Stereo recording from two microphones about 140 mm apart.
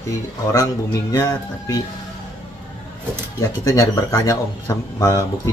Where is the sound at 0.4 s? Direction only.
25° left (ahead or behind).